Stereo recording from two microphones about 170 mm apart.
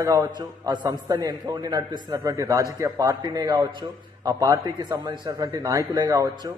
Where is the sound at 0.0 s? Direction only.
20° right (ahead or behind).